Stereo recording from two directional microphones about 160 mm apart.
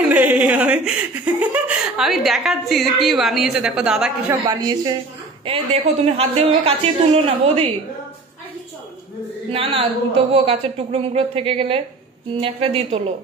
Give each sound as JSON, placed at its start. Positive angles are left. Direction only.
{"t": 0.1, "sound": "speech", "side_deg": -10}
{"t": 4.3, "sound": "a woman's voice", "side_deg": -25}
{"t": 5.4, "sound": "speech", "side_deg": -35}
{"t": 9.5, "sound": "speech", "side_deg": -35}